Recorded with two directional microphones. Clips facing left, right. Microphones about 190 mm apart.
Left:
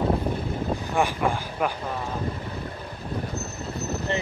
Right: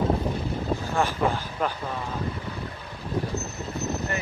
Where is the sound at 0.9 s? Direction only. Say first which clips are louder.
Left 1 dB; 15° left (ahead or behind).